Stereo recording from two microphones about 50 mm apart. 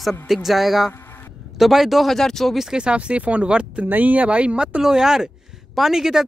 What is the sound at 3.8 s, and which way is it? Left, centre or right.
Speech, right.